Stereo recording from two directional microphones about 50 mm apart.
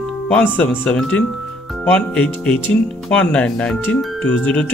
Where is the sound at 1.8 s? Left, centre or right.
Left.